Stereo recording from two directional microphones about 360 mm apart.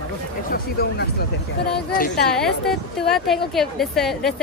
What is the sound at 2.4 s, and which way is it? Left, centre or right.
Speech, centre.